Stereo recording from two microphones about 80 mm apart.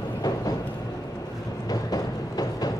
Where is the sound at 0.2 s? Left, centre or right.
Left.